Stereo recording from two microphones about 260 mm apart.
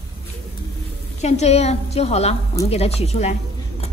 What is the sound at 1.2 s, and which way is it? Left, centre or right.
A woman's voice, left.